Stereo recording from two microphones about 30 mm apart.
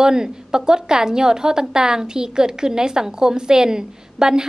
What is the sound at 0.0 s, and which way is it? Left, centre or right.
A woman's voice, right.